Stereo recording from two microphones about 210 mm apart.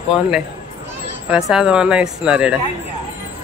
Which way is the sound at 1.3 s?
Centre (ahead or behind).